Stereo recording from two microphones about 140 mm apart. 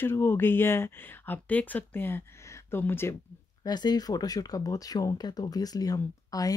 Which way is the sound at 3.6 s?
30° left (ahead or behind).